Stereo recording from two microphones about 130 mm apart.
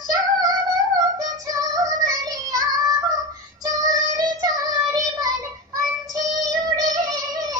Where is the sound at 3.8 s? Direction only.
25° right (ahead or behind).